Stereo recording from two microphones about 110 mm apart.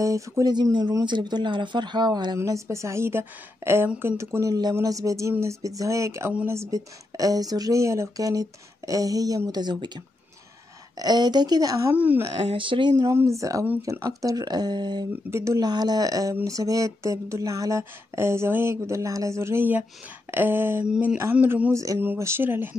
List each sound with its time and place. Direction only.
0.0 s speech: 30° right (ahead or behind)
2.3 s speech: 25° right (ahead or behind)
11.9 s speech: 15° right (ahead or behind)
12.4 s speech: 50° right (ahead or behind)
13.0 s speech: 25° right (ahead or behind); by 15.0 s 40° right (ahead or behind)
15.3 s speech: 25° right (ahead or behind)
15.6 s speech: 40° right (ahead or behind); by 21.2 s 10° right (ahead or behind)
21.2 s speech: 20° right (ahead or behind)